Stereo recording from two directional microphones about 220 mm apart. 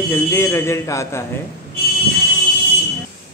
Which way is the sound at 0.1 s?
10° left (ahead or behind).